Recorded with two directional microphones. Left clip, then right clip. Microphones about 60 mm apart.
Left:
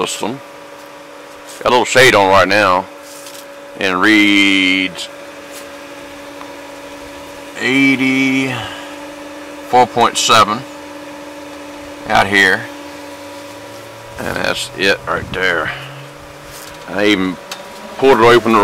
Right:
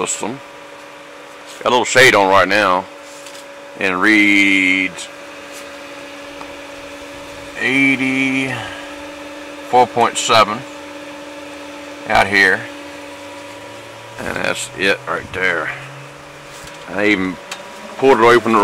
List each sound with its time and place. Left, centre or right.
0.0 s speech: left
1.6 s speech: centre
3.7 s speech: centre
7.5 s mantra: centre
12.1 s mantra: centre
14.1 s mantra: centre
16.9 s insect: centre
18.0 s speech: left